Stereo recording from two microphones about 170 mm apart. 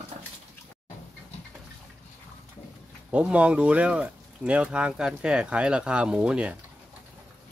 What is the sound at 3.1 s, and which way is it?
Speech, 5° right (ahead or behind).